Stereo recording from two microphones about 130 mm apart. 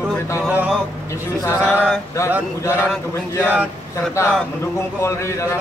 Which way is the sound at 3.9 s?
20° left (ahead or behind).